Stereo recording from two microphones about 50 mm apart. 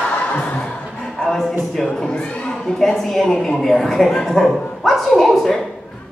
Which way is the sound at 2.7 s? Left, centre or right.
Centre.